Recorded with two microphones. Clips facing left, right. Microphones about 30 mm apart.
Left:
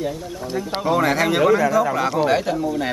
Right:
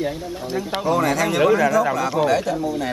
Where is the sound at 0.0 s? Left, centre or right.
Right.